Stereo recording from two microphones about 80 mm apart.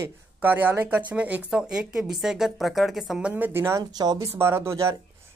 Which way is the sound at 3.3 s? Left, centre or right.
Right.